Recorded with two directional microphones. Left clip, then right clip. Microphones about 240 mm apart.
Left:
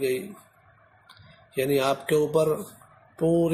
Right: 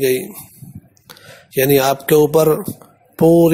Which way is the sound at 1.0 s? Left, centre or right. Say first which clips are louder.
Right 13 dB; right.